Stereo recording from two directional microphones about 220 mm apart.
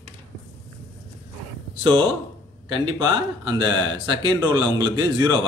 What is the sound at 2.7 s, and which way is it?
Speech, 20° right (ahead or behind).